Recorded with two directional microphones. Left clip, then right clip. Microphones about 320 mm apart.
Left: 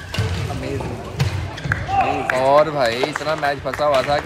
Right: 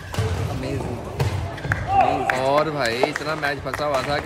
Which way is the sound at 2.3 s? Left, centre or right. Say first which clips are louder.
Left 5 dB; centre.